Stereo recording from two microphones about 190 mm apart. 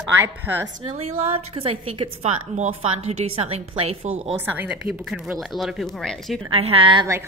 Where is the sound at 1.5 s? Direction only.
30° right (ahead or behind).